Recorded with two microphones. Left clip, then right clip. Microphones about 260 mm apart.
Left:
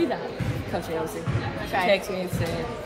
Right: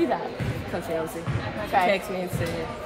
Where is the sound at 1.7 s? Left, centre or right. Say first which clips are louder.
Right 3 dB; right.